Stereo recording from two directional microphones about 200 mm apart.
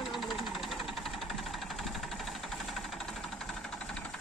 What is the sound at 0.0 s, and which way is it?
Engine knocking, centre (ahead or behind).